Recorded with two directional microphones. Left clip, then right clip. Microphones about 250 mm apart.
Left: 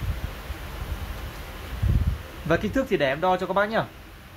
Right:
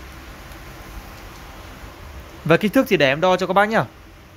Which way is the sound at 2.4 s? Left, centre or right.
Right.